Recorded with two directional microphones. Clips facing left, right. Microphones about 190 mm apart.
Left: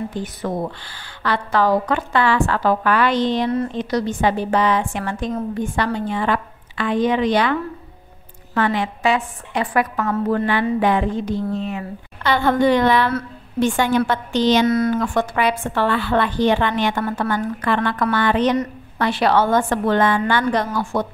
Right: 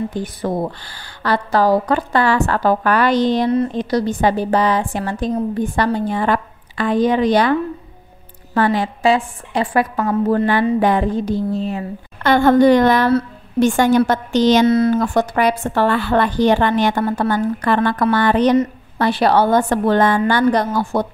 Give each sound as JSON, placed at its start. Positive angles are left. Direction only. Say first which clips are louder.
{"t": 0.2, "sound": "a woman's voice", "louder": "right 3 dB", "side_deg": -35}
{"t": 8.5, "sound": "a woman's voice", "louder": "right 3 dB", "side_deg": -35}
{"t": 12.2, "sound": "a woman's voice", "louder": "right 6 dB", "side_deg": -50}
{"t": 14.7, "sound": "a woman's voice", "louder": "right 4 dB", "side_deg": -30}